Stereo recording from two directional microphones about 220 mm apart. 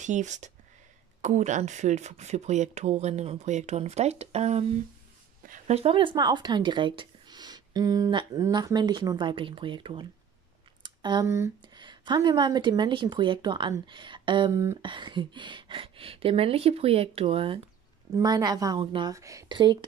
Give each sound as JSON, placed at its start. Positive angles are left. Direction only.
{"t": 0.0, "sound": "a woman's voice", "side_deg": -35}